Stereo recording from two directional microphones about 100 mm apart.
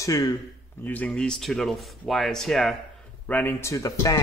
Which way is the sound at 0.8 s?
15° left (ahead or behind).